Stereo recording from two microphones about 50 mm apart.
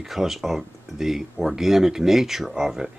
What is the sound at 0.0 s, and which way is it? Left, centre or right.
Speech, centre.